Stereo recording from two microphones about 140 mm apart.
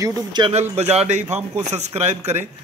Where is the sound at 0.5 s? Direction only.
50° right (ahead or behind).